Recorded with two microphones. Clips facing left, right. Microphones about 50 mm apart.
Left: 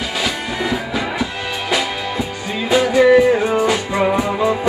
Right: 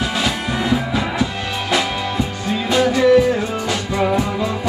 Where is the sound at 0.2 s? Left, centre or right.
Centre.